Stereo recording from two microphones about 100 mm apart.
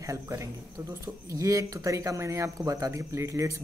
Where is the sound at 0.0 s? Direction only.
30° right (ahead or behind).